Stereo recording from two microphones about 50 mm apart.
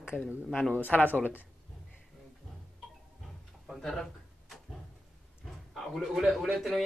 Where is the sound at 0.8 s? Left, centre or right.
Left.